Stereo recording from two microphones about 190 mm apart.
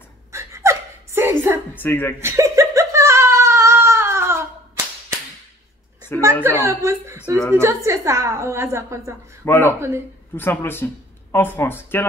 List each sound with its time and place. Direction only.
0.3 s gasp: 15° right (ahead or behind)
1.8 s speech: 10° left (ahead or behind)
2.1 s a sound: 15° right (ahead or behind)
6.1 s speech: 10° left (ahead or behind)
6.4 s a woman's voice: 15° right (ahead or behind)
9.4 s speech: 10° left (ahead or behind)
9.8 s a woman's voice: 15° right (ahead or behind)
10.3 s speech: 10° left (ahead or behind)